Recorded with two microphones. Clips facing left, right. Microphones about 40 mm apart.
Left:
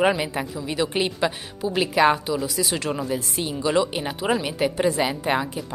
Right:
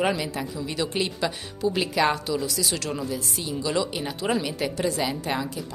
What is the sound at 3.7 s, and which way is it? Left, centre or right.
Speech, centre.